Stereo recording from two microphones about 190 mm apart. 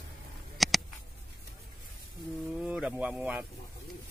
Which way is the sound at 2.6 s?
5° right (ahead or behind).